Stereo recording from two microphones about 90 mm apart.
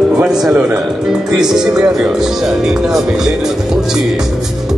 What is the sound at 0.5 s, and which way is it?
Speech, 15° right (ahead or behind).